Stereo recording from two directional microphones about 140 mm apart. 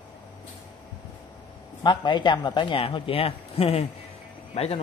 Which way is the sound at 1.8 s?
30° left (ahead or behind).